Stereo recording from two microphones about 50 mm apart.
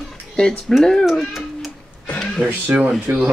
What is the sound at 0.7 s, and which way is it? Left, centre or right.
Speech, centre.